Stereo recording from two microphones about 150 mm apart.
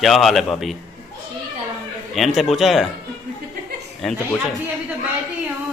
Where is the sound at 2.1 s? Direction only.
Centre (ahead or behind).